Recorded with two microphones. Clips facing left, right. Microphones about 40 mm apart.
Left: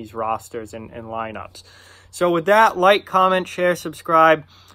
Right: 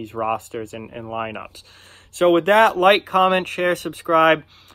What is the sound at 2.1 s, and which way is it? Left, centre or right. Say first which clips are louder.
Speech: right 1 dB; right.